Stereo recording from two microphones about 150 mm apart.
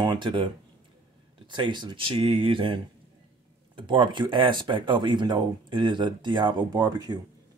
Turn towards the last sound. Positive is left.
turn(degrees=-25)  # may be behind; listen again after turning